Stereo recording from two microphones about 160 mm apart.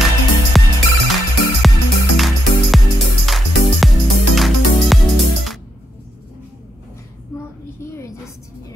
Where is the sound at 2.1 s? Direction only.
Centre (ahead or behind).